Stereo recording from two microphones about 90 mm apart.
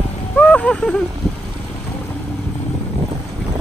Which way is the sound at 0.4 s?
15° left (ahead or behind).